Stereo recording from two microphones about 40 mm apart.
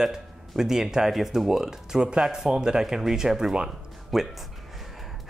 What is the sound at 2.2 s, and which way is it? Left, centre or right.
Speech, centre.